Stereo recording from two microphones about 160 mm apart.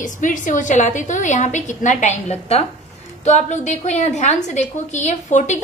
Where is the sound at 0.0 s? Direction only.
55° left (ahead or behind).